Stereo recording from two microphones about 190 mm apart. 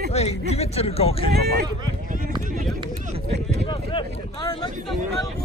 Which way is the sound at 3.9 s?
25° left (ahead or behind).